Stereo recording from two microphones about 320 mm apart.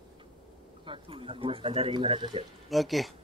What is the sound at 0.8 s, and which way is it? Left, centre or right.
Speech, centre.